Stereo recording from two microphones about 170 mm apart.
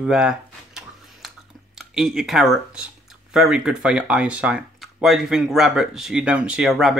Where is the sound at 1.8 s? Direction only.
Centre (ahead or behind).